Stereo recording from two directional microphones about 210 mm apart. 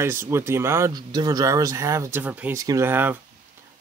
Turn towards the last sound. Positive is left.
turn(degrees=-10)  # may be behind; listen again after turning